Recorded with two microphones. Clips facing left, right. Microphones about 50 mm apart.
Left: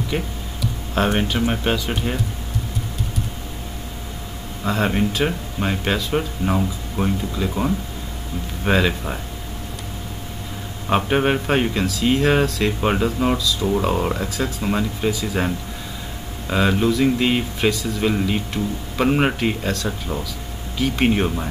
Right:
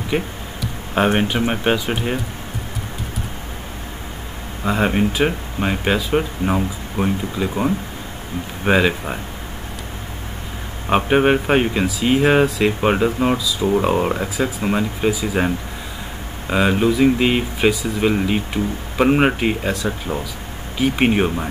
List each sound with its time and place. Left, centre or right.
0.1 s speech: centre
4.6 s speech: centre
10.9 s speech: centre